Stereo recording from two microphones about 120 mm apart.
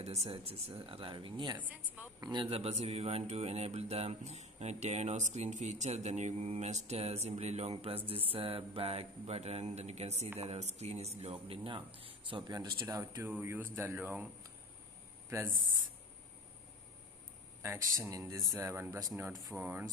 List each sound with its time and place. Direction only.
0.0 s speech: 65° right (ahead or behind)
0.3 s speech: 55° right (ahead or behind)
2.0 s speech: 10° right (ahead or behind)
2.3 s speech: 55° right (ahead or behind); by 13.2 s 30° right (ahead or behind)
13.2 s speech: 15° right (ahead or behind)
17.6 s speech: 20° right (ahead or behind)
19.5 s speech: 15° right (ahead or behind)